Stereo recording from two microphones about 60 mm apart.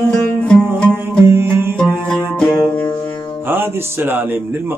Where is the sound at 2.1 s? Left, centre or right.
Centre.